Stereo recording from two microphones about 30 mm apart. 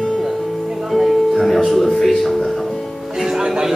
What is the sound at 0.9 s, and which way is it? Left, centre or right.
Music, centre.